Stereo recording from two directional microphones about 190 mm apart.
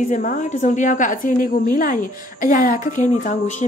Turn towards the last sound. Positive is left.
turn(degrees=40)  # may be behind; listen again after turning